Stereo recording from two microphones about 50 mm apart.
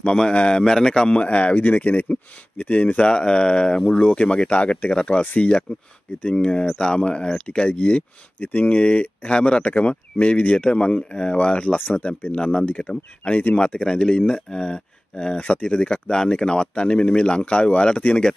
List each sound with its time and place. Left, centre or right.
0.0 s speech: centre
3.1 s speech: centre
5.2 s speech: left
6.2 s speech: left
12.4 s speech: centre
12.6 s speech: left